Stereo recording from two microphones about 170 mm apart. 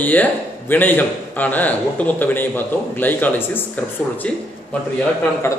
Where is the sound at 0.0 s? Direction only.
10° left (ahead or behind).